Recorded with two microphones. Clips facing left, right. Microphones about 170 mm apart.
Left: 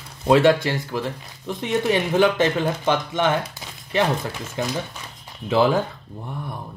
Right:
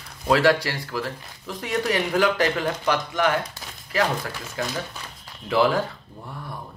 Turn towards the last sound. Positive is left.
turn(degrees=20)  # may be behind; listen again after turning